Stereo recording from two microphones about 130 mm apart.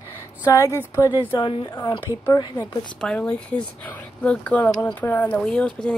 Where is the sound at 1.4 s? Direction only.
40° left (ahead or behind).